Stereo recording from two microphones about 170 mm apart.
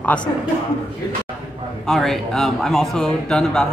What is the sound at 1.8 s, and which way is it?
Speech, centre (ahead or behind).